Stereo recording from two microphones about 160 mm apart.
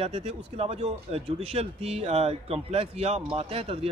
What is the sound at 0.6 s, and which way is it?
Speech, 40° right (ahead or behind).